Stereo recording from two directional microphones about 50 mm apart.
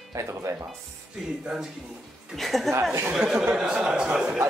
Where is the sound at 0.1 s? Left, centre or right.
Right.